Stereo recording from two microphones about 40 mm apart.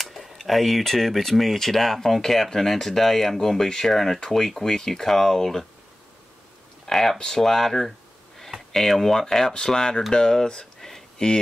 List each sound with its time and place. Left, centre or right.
0.0 s speech: centre
6.9 s speech: centre
10.8 s a sound: centre